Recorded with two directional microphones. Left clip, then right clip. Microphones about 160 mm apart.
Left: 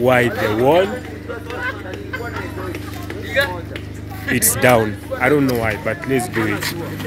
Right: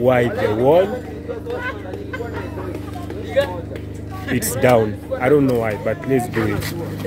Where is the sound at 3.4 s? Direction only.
25° right (ahead or behind).